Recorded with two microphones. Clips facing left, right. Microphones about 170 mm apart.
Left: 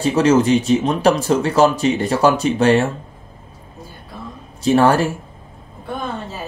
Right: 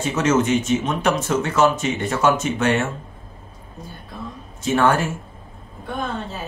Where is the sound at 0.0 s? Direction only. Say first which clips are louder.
Left 5 dB; 35° left (ahead or behind).